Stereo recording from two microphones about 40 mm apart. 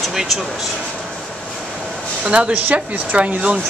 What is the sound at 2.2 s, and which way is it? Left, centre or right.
Speech, right.